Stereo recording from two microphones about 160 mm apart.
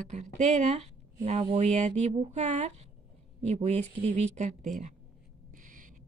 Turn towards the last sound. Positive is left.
turn(degrees=-55)  # may be behind; listen again after turning